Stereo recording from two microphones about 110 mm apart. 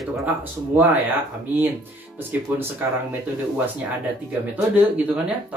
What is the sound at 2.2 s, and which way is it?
Speech, 20° right (ahead or behind).